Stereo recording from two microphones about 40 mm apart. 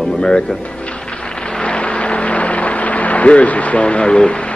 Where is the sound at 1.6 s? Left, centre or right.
Left.